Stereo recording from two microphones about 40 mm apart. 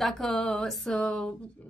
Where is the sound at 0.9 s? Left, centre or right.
Left.